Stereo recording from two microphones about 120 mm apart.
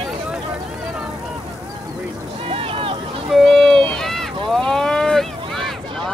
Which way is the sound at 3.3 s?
Centre (ahead or behind).